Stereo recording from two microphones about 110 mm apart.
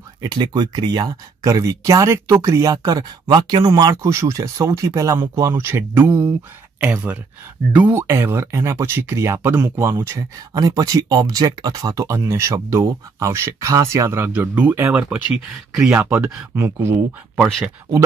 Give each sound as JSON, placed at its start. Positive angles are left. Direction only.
{"t": 0.2, "sound": "speech", "side_deg": -40}
{"t": 3.3, "sound": "speech", "side_deg": -50}
{"t": 4.1, "sound": "speech", "side_deg": -25}
{"t": 6.0, "sound": "speech", "side_deg": -30}
{"t": 6.8, "sound": "speech", "side_deg": -15}
{"t": 14.9, "sound": "speech", "side_deg": -5}